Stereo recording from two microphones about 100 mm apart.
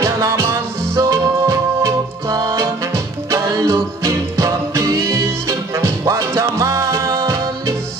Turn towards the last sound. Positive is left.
turn(degrees=-30)  # may be behind; listen again after turning